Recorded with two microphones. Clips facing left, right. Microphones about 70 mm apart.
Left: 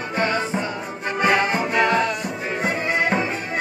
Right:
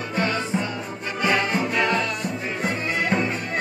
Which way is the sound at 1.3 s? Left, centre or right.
Centre.